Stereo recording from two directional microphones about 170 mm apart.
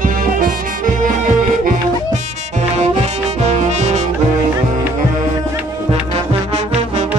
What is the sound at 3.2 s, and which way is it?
Music, 40° right (ahead or behind).